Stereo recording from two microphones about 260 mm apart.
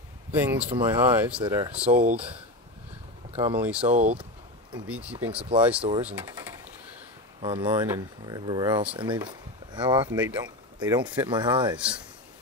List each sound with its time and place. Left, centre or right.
0.3 s speech: centre
1.9 s speech: right
3.5 s speech: centre
3.8 s speech: right
4.7 s speech: centre
5.8 s speech: centre
6.0 s speech: centre
11.7 s speech: centre